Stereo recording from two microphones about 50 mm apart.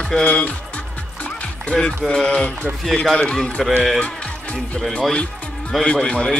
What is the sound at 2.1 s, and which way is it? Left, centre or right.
Speech, centre.